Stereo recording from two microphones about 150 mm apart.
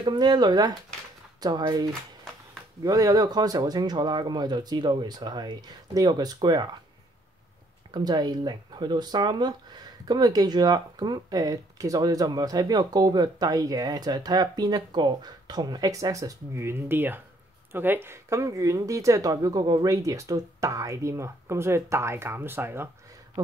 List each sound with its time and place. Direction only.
0.0 s speech: 30° right (ahead or behind)
7.9 s speech: 25° right (ahead or behind)